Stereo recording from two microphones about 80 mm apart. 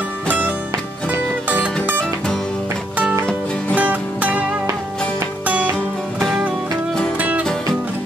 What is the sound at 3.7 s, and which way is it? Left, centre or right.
Music, centre.